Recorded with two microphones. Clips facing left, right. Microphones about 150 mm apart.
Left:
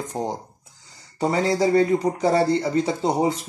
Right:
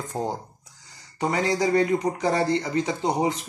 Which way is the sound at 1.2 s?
30° left (ahead or behind).